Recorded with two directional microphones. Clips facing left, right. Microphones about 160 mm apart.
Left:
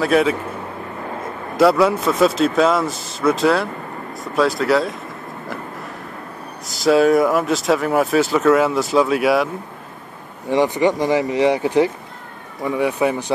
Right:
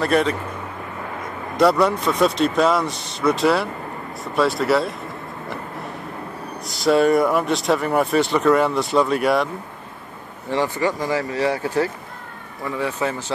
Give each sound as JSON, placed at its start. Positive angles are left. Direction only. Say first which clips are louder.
{"t": 0.0, "sound": "speech", "louder": "left 3 dB", "side_deg": 5}
{"t": 1.6, "sound": "speech", "louder": "left 2 dB", "side_deg": 5}
{"t": 6.7, "sound": "speech", "louder": "left 2 dB", "side_deg": 0}
{"t": 10.5, "sound": "speech", "louder": "left 5 dB", "side_deg": 20}